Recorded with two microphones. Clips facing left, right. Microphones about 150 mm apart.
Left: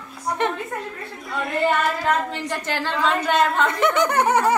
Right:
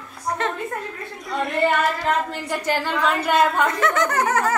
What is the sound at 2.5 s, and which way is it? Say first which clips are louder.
A woman's voice: right 2 dB; 10° right (ahead or behind).